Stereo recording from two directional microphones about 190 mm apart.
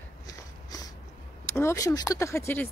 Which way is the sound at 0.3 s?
20° left (ahead or behind).